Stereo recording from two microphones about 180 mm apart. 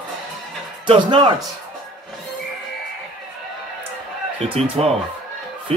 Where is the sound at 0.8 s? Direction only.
30° right (ahead or behind).